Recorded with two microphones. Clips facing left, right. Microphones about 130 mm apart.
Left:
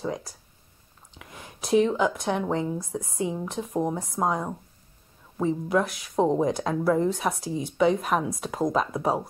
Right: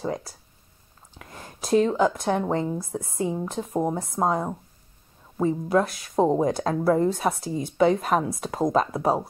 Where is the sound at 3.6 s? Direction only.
5° right (ahead or behind).